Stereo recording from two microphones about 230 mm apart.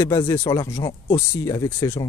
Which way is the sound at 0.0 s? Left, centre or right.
Centre.